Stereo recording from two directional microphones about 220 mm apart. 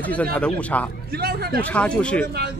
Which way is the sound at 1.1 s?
45° right (ahead or behind).